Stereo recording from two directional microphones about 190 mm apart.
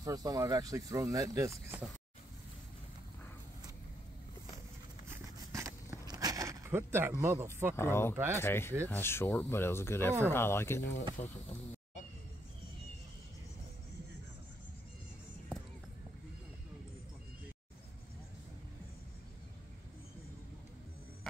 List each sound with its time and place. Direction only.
0.0 s speech: 20° right (ahead or behind)
5.1 s a sound: 15° right (ahead or behind)
7.7 s speech: 15° left (ahead or behind)
8.1 s speech: 15° right (ahead or behind)
8.4 s speech: 10° left (ahead or behind)
11.2 s speech: 40° left (ahead or behind)